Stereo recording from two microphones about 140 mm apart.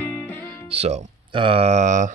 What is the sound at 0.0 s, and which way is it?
Music, 10° left (ahead or behind).